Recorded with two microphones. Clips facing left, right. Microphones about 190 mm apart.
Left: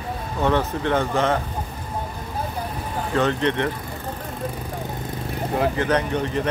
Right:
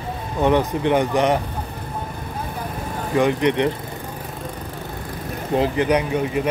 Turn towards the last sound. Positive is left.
turn(degrees=-10)  # may be behind; listen again after turning